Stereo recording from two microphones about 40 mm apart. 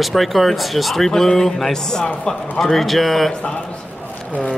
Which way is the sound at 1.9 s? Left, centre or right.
Centre.